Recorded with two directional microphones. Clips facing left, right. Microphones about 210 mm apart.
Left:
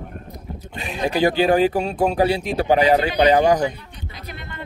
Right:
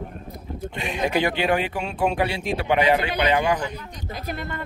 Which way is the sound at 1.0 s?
35° left (ahead or behind).